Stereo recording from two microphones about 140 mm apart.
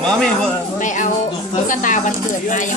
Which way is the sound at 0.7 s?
65° left (ahead or behind).